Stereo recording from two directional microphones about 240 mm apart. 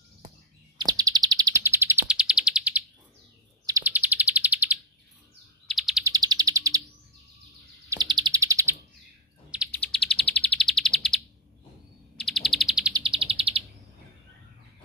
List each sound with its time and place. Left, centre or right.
0.7 s bird: centre
5.7 s chirp: centre
6.0 s bird: centre
7.9 s bird: centre
9.7 s bird: centre
12.9 s bird: right